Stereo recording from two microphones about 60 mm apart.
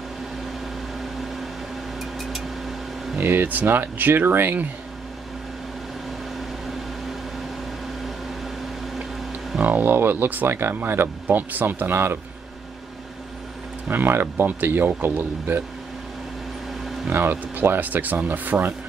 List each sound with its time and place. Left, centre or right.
2.0 s a sound: centre
3.2 s speech: right
9.6 s speech: right
13.8 s speech: right
17.1 s speech: right